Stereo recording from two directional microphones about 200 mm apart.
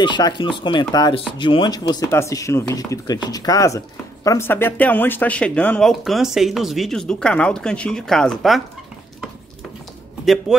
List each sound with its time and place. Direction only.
0.0 s speech: 25° left (ahead or behind); by 8.6 s centre (ahead or behind)